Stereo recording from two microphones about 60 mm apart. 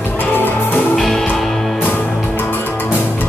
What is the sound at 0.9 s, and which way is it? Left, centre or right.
Music, centre.